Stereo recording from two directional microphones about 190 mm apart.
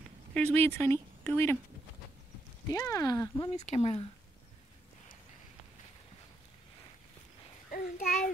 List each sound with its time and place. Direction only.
0.3 s speech: 5° left (ahead or behind)
2.7 s speech: 15° left (ahead or behind)
3.5 s speech: 35° left (ahead or behind)
7.7 s a child's voice: 45° left (ahead or behind)